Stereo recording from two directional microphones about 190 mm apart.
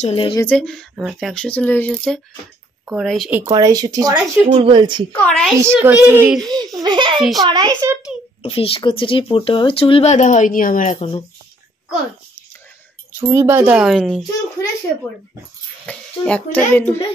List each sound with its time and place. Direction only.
0.0 s speech: 30° left (ahead or behind)
0.4 s speech: 5° left (ahead or behind)
3.4 s speech: 20° right (ahead or behind)
5.1 s speech: 5° left (ahead or behind)
5.6 s speech: 10° right (ahead or behind)
6.4 s speech: 20° right (ahead or behind)
8.4 s speech: 30° left (ahead or behind)
13.1 s speech: 15° right (ahead or behind)
15.8 s a child's voice: 5° left (ahead or behind)